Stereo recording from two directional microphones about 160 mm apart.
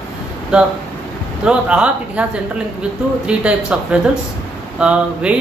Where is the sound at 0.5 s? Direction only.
5° right (ahead or behind).